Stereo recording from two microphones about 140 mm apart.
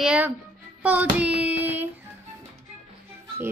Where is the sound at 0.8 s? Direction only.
10° right (ahead or behind).